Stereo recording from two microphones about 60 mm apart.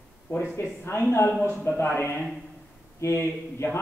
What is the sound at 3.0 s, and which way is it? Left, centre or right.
Speech, left.